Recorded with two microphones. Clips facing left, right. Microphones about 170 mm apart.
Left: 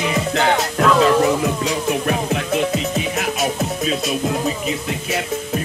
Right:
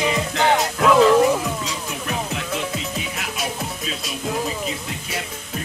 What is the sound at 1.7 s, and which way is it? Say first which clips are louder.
Music: left 9 dB; 55° left (ahead or behind).